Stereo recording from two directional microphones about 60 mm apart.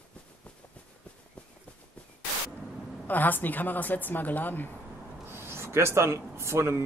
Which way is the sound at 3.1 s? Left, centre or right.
Left.